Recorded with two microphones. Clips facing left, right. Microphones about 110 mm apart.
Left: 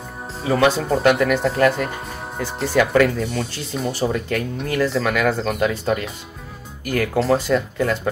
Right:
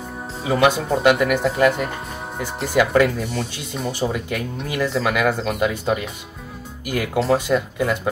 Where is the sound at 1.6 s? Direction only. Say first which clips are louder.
Even; 15° right (ahead or behind).